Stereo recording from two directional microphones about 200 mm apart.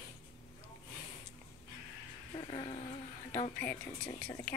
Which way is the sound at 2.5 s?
25° left (ahead or behind).